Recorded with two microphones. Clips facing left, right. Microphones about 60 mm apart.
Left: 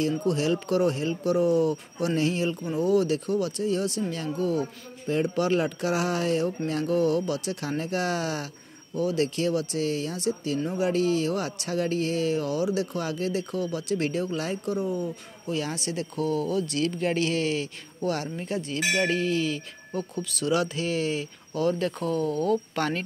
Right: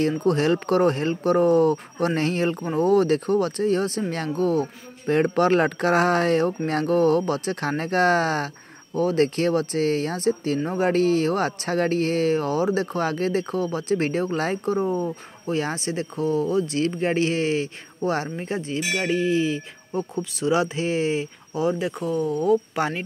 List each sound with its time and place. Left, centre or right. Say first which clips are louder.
0.2 s speech: right 5 dB; right
18.9 s speech: right 4 dB; centre